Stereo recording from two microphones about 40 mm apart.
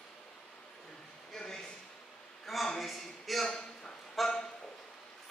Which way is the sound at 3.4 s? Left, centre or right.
Centre.